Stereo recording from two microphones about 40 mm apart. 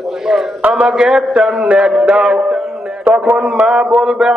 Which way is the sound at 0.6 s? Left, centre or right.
Right.